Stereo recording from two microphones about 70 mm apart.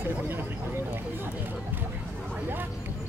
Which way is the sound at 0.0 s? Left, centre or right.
Right.